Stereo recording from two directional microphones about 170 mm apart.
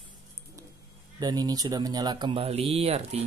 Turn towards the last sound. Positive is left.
turn(degrees=-35)  # may be behind; listen again after turning